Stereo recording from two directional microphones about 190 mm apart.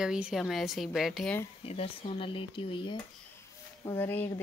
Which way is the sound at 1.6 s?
30° left (ahead or behind).